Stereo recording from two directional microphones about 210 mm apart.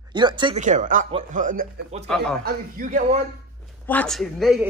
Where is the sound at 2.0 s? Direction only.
Centre (ahead or behind).